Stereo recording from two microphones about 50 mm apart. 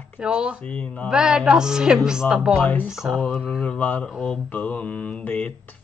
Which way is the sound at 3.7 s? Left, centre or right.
Left.